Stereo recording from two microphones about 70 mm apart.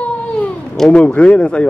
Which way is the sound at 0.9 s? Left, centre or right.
Centre.